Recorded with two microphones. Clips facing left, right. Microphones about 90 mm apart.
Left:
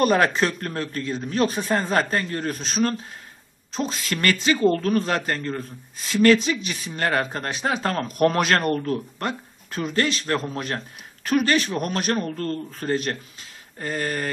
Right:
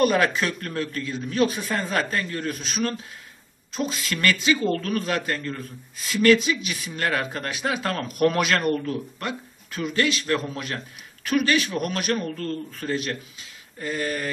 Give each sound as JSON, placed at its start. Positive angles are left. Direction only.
{"t": 0.0, "sound": "speech", "side_deg": 35}